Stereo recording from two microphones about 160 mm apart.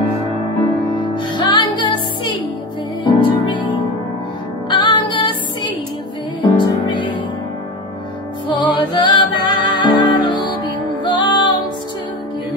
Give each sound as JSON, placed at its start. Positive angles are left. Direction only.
{"t": 0.9, "sound": "music", "side_deg": 30}
{"t": 8.7, "sound": "music", "side_deg": 30}